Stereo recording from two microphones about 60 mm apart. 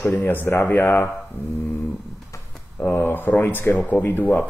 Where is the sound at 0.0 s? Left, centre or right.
Left.